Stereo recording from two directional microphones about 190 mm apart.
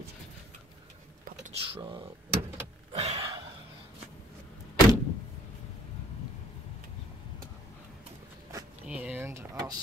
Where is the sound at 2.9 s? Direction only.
30° right (ahead or behind).